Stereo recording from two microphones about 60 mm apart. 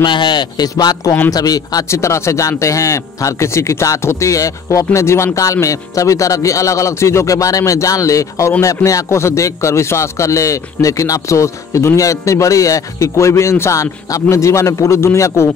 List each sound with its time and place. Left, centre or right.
1.3 s speech: left
1.9 s speech: left
5.4 s speech: left
9.1 s speech: left